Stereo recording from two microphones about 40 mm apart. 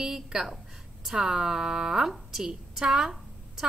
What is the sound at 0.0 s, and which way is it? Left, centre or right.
A woman's voice, centre.